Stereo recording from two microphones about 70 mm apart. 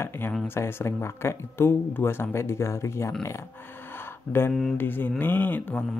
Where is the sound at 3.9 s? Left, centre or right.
Left.